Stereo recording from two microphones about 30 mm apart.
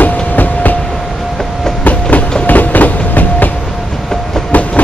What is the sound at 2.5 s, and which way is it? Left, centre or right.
Train, left.